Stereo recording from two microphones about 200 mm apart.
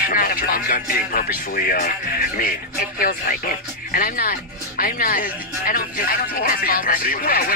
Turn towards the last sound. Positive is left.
turn(degrees=45)  # may be behind; listen again after turning